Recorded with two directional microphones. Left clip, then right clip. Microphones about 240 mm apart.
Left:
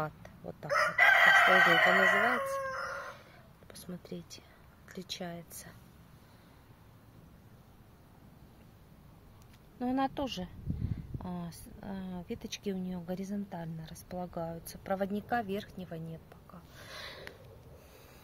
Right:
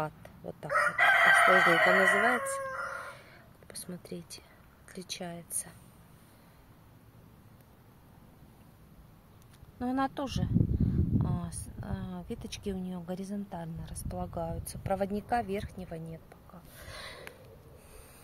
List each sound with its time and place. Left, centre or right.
0.0 s chicken: centre
0.7 s chicken: left
3.1 s a sound: centre
4.8 s speech: centre
9.8 s speech: centre
16.7 s a sound: centre